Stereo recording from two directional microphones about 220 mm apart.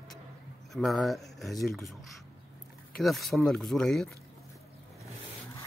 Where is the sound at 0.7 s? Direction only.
Centre (ahead or behind).